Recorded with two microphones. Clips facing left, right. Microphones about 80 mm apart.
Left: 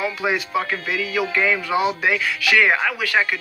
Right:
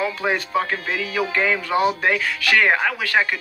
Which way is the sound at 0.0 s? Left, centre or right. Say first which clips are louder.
Even; right.